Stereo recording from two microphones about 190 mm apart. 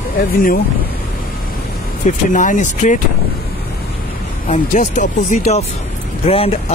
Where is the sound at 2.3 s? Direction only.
45° left (ahead or behind).